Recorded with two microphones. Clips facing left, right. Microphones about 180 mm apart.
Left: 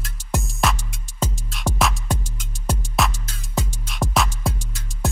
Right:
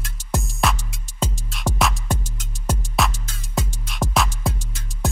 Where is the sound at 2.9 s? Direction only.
Centre (ahead or behind).